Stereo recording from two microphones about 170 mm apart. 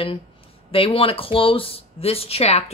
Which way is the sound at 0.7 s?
30° left (ahead or behind).